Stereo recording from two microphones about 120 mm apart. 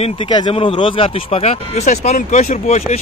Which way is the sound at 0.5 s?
50° left (ahead or behind).